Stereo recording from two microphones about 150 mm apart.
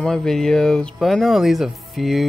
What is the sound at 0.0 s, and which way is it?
Speech, 5° left (ahead or behind).